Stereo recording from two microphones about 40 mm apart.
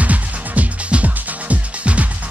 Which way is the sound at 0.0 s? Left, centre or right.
Right.